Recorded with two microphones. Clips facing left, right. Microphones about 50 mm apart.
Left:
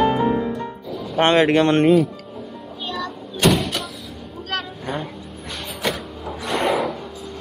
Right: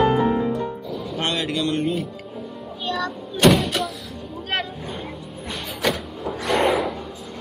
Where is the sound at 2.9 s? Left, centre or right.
Centre.